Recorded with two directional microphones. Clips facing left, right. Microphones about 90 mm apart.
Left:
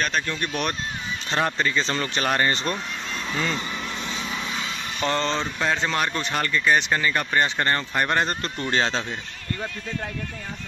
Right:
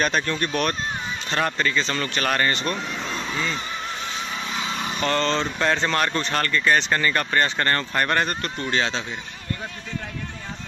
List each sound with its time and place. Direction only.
0.3 s speech: 10° left (ahead or behind)
5.0 s speech: 15° left (ahead or behind)
8.6 s speech: 35° left (ahead or behind)